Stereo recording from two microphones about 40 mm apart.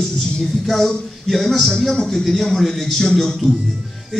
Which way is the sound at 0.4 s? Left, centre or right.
Centre.